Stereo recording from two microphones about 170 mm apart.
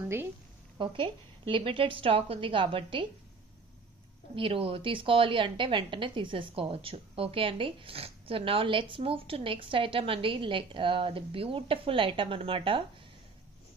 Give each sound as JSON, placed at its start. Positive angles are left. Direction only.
{"t": 0.0, "sound": "speech", "side_deg": -15}
{"t": 0.7, "sound": "a woman's voice", "side_deg": -30}
{"t": 4.4, "sound": "a woman's voice", "side_deg": -35}